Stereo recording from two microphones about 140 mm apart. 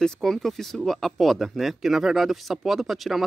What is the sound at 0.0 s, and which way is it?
Speech, 5° left (ahead or behind).